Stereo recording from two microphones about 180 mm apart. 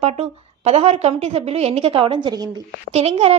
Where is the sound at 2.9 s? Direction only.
35° right (ahead or behind).